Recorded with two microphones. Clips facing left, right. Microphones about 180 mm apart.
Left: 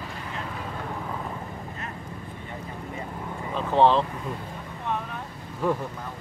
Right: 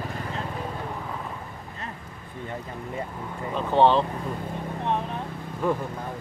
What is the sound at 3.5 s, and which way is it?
Vehicle, centre (ahead or behind).